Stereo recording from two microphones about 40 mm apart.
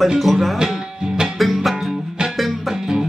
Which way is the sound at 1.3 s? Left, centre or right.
Centre.